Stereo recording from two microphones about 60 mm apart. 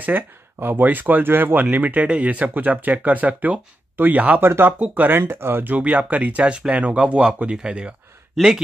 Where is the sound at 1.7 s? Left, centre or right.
Right.